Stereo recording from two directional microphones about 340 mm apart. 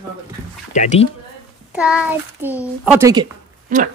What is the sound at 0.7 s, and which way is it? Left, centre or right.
Speech, left.